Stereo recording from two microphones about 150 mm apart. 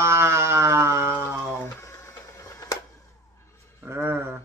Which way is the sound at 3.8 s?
15° right (ahead or behind).